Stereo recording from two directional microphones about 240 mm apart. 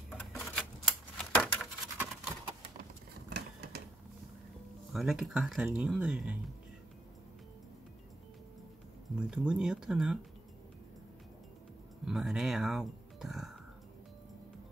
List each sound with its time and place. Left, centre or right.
0.2 s typewriter: centre
2.3 s a sound: centre
3.3 s sewing machine: right
4.9 s speech: centre
9.2 s speech: centre
12.0 s music: centre